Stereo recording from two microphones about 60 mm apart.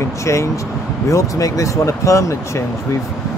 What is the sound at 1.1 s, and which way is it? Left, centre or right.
Speech, left.